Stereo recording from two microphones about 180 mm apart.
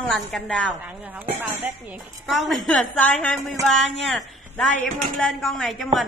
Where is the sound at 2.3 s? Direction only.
Centre (ahead or behind).